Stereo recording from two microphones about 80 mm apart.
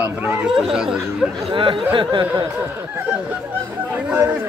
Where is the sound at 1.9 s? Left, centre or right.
Right.